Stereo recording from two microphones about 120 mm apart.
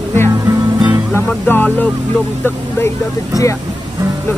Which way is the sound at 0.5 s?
25° right (ahead or behind).